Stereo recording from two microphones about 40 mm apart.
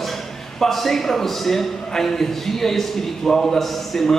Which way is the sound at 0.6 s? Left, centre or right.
Centre.